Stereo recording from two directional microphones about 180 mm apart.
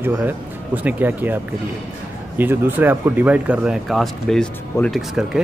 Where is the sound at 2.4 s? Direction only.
10° right (ahead or behind).